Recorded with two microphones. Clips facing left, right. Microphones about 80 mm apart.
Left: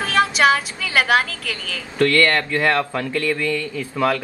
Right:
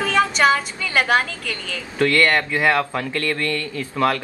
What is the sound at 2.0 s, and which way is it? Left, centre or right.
Speech, centre.